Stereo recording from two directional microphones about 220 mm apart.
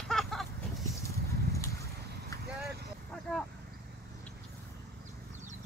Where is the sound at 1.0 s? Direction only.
15° left (ahead or behind).